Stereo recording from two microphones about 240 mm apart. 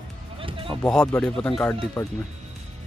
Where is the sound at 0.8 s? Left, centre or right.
Centre.